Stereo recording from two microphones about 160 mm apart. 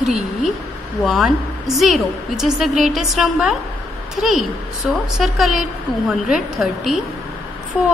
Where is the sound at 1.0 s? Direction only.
Centre (ahead or behind).